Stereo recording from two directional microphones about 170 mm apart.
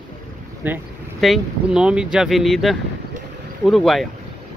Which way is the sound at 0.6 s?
10° right (ahead or behind).